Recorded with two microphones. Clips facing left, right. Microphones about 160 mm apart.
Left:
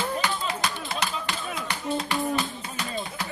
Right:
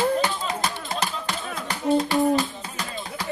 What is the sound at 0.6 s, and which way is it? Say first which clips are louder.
Music: right 2 dB; 40° right (ahead or behind).